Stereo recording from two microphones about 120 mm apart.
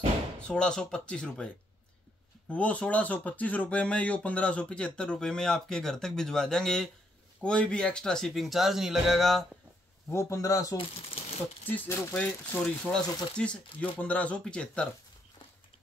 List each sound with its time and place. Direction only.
0.4 s speech: 5° left (ahead or behind)
2.5 s speech: 10° left (ahead or behind)
10.0 s a man's voice: 25° left (ahead or behind)
10.8 s speech: 55° left (ahead or behind)
11.6 s speech: 15° left (ahead or behind)